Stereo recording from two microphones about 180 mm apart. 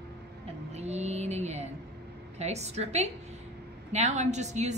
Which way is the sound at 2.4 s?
35° right (ahead or behind).